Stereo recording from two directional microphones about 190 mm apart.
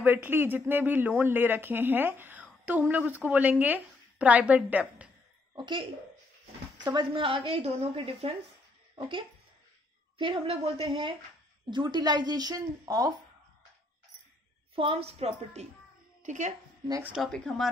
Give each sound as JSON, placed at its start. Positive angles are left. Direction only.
{"t": 0.0, "sound": "a woman's voice", "side_deg": -10}
{"t": 5.5, "sound": "a woman's voice", "side_deg": -25}
{"t": 10.1, "sound": "a woman's voice", "side_deg": -25}
{"t": 14.8, "sound": "a woman's voice", "side_deg": -30}
{"t": 17.0, "sound": "speech", "side_deg": -5}